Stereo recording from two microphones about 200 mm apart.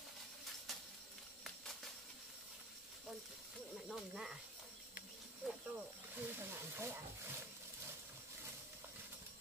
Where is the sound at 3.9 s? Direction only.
Centre (ahead or behind).